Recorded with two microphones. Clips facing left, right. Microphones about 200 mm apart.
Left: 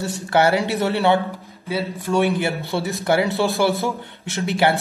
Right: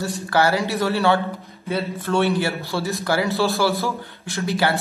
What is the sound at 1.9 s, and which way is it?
A man's voice, 15° left (ahead or behind).